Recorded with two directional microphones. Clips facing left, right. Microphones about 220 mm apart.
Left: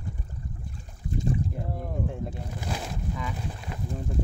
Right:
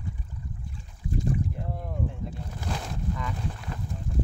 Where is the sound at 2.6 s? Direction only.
10° left (ahead or behind).